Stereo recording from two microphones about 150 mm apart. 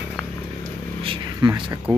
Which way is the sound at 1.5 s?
20° right (ahead or behind).